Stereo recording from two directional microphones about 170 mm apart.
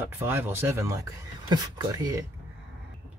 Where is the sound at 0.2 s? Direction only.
15° right (ahead or behind).